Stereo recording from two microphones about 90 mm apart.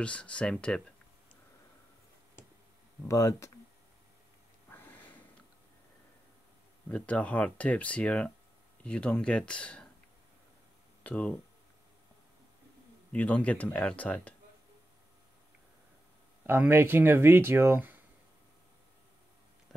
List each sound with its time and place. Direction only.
0.0 s speech: 10° left (ahead or behind)
3.1 s speech: 35° left (ahead or behind)
6.9 s speech: 15° left (ahead or behind)
11.1 s speech: 15° left (ahead or behind)
13.1 s speech: 15° left (ahead or behind)
16.4 s speech: 25° right (ahead or behind)